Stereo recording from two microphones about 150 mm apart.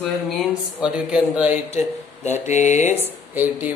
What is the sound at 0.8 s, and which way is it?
Speech, 5° right (ahead or behind).